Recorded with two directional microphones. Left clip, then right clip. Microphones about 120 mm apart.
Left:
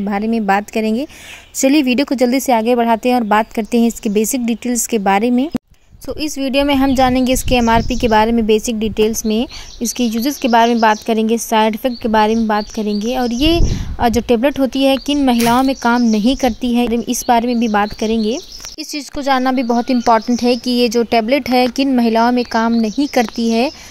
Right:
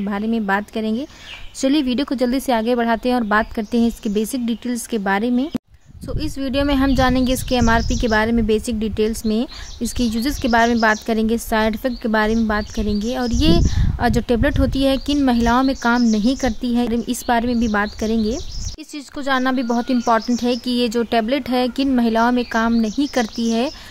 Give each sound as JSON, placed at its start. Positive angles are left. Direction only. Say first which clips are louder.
{"t": 0.0, "sound": "a woman's voice", "louder": "left 5 dB", "side_deg": 25}